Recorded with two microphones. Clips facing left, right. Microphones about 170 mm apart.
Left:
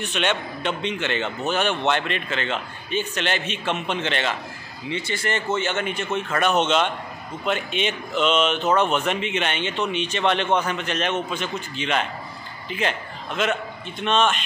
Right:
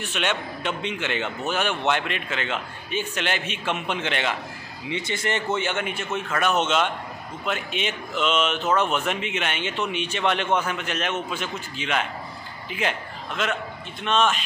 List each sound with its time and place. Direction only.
0.0 s a man's voice: 5° right (ahead or behind)